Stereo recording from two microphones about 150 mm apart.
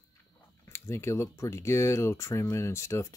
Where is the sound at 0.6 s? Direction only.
15° left (ahead or behind).